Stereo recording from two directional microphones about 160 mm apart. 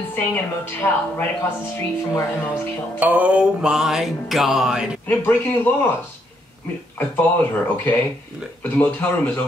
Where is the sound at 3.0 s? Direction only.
10° right (ahead or behind).